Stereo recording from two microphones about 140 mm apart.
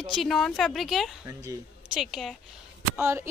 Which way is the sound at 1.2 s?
25° right (ahead or behind).